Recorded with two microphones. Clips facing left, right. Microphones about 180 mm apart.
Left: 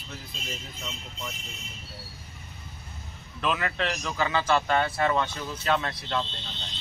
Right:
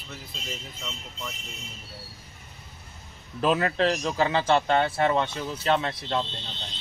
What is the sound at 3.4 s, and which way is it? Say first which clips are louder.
A man's voice: right 5 dB; 35° right (ahead or behind).